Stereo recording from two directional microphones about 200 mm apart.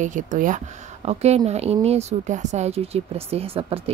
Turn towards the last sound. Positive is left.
turn(degrees=-30)  # may be behind; listen again after turning